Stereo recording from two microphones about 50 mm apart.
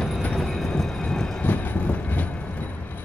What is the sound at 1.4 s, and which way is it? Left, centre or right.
Train, left.